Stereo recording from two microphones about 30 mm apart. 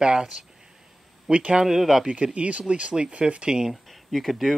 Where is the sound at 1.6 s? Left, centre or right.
Centre.